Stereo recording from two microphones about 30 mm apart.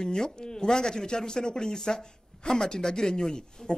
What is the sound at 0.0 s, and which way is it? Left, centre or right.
Speech, left.